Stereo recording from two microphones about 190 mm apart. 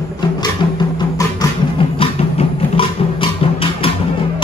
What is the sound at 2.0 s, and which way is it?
Music, 30° left (ahead or behind).